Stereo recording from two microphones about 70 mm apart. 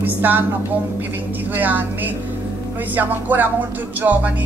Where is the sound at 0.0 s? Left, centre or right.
Right.